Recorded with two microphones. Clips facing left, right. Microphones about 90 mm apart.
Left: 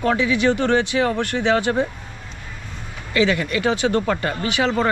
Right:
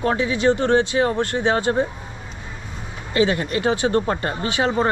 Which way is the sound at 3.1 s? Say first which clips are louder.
Even; 30° right (ahead or behind).